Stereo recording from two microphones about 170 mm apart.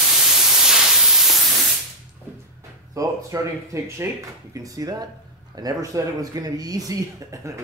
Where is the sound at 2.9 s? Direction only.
20° right (ahead or behind).